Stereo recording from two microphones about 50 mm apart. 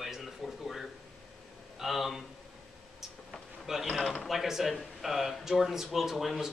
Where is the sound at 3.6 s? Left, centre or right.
Centre.